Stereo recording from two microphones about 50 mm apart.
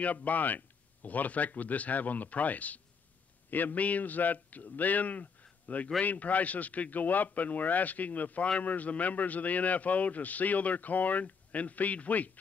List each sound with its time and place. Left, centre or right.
0.0 s a man's voice: left